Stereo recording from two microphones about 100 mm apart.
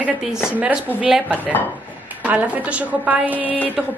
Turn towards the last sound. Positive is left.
turn(degrees=-15)  # may be behind; listen again after turning